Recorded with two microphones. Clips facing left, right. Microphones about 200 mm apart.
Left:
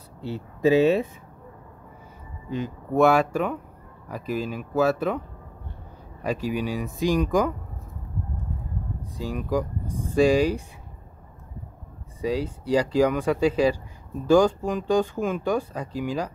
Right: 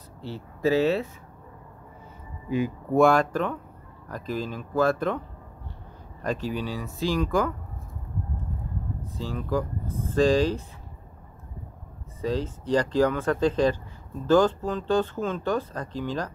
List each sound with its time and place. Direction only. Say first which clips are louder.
0.2 s speech: left 4 dB; 15° left (ahead or behind)
2.5 s speech: right 3 dB; 10° right (ahead or behind)
3.0 s speech: left 1 dB; 5° left (ahead or behind)
6.2 s speech: left 2 dB; 10° left (ahead or behind)
9.1 s speech: left 2 dB; 15° left (ahead or behind)
12.2 s speech: left 2 dB; 10° left (ahead or behind)